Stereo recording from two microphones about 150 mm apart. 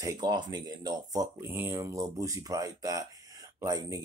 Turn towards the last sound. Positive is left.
turn(degrees=-20)  # may be behind; listen again after turning